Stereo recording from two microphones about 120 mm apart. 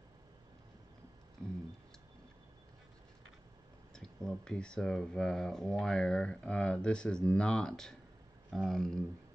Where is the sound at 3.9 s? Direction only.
5° left (ahead or behind).